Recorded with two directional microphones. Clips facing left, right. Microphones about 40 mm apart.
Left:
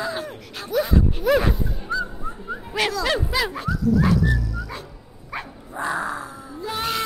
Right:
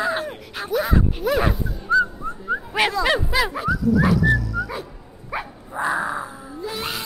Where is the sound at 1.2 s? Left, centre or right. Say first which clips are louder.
Left 5 dB; centre.